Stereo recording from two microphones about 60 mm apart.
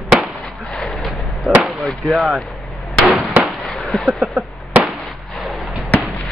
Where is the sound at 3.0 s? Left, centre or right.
Centre.